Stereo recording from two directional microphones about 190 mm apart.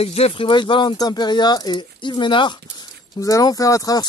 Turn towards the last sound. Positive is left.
turn(degrees=20)  # may be behind; listen again after turning